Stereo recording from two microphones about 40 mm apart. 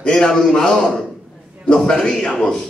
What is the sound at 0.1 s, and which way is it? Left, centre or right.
Speech, centre.